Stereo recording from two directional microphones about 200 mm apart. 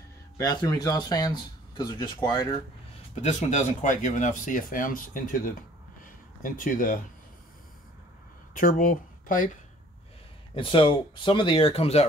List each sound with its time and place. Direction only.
0.4 s speech: 20° left (ahead or behind)
3.2 s speech: 35° left (ahead or behind)
6.0 s a sound: 40° left (ahead or behind)
8.5 s speech: 45° left (ahead or behind)
10.5 s speech: 25° left (ahead or behind)